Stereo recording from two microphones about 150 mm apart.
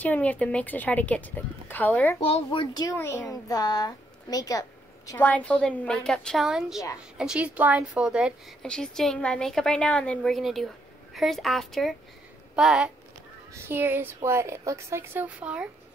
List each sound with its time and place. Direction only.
0.0 s speech: 10° left (ahead or behind)
2.2 s speech: 40° left (ahead or behind)
3.0 s a child's voice: 20° left (ahead or behind)
5.2 s a woman's voice: 10° left (ahead or behind); by 8.5 s 5° right (ahead or behind)
8.6 s a woman's voice: 5° left (ahead or behind)